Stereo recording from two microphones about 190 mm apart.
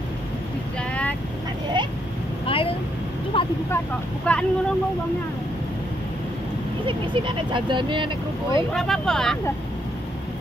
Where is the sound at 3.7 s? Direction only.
5° left (ahead or behind).